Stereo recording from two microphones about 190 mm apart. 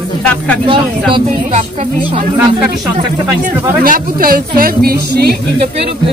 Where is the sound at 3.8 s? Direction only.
50° right (ahead or behind).